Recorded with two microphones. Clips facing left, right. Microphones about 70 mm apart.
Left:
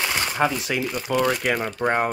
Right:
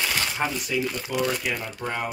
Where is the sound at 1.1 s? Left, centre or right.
Left.